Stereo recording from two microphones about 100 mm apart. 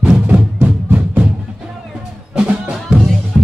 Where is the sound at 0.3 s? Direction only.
15° right (ahead or behind).